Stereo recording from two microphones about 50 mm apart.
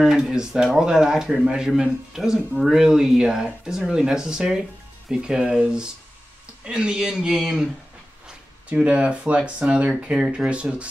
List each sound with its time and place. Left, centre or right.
0.0 s speech: centre
8.6 s speech: right